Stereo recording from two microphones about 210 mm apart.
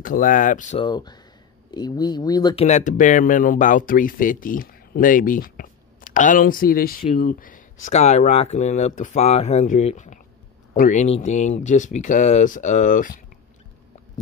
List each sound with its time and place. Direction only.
0.0 s speech: 40° left (ahead or behind)
0.8 s speech: 20° left (ahead or behind)
2.6 s speech: 35° left (ahead or behind)